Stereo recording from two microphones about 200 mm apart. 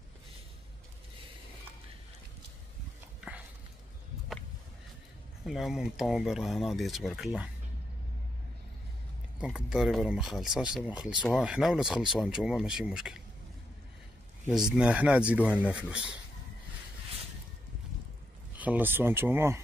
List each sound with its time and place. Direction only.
5.4 s speech: centre (ahead or behind)
9.4 s speech: 5° right (ahead or behind)
14.5 s speech: 5° right (ahead or behind)
18.6 s speech: 10° right (ahead or behind)